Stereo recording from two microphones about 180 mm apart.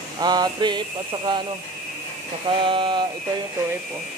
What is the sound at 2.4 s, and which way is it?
Speech, 30° right (ahead or behind).